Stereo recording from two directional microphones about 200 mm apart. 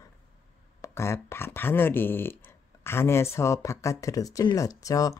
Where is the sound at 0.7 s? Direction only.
15° left (ahead or behind).